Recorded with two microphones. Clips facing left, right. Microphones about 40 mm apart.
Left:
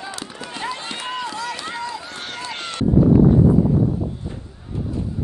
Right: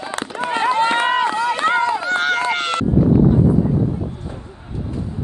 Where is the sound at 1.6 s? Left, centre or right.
Right.